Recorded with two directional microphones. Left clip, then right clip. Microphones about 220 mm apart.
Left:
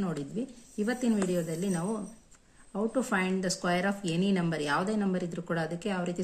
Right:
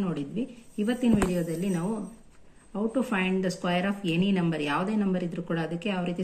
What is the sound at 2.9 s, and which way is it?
Speech, 45° left (ahead or behind).